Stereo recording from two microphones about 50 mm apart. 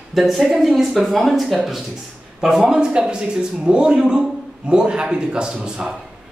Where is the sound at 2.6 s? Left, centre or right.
Centre.